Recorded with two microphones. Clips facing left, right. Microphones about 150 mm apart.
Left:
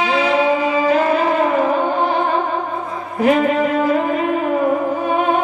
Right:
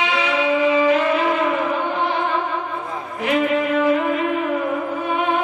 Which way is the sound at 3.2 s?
40° left (ahead or behind).